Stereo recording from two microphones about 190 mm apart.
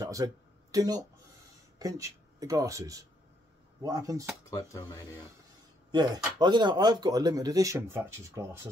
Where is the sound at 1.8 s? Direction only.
20° right (ahead or behind).